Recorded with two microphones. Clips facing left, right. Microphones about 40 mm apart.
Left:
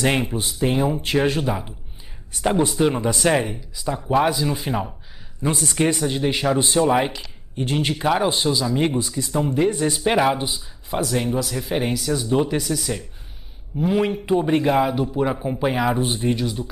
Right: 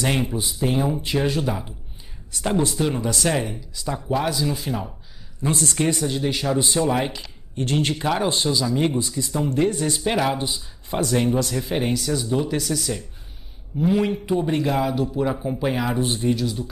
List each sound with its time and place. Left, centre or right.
0.0 s speech: left
1.4 s speech: centre
7.1 s speech: centre
7.5 s speech: centre
10.9 s speech: centre